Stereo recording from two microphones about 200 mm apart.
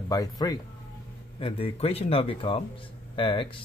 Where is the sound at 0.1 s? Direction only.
20° left (ahead or behind).